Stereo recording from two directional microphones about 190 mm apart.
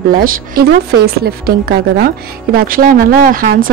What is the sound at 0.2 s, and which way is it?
Speech, 55° right (ahead or behind).